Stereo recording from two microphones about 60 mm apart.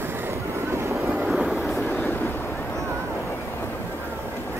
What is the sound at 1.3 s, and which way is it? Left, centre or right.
Vehicle, centre.